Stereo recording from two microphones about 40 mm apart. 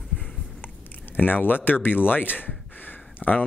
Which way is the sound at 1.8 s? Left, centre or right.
Left.